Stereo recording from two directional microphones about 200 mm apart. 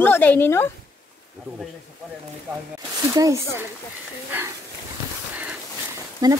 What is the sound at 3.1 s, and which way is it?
Speech, 15° right (ahead or behind).